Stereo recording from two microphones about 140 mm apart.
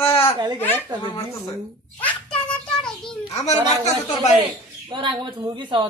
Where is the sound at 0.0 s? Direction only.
15° left (ahead or behind).